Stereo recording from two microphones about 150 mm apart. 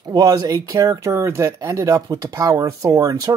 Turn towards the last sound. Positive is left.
turn(degrees=-25)  # may be behind; listen again after turning